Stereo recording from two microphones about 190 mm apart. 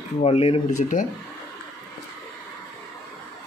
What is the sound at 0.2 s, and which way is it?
Speech, 30° left (ahead or behind).